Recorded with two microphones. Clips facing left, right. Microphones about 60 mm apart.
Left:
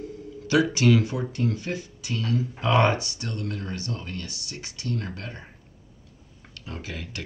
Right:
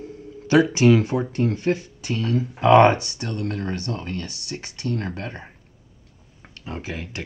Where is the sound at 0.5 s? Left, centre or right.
Right.